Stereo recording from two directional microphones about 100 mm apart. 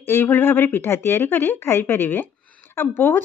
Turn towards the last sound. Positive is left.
turn(degrees=20)  # may be behind; listen again after turning